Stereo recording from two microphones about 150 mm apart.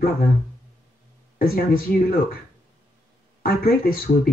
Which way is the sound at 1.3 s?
80° left.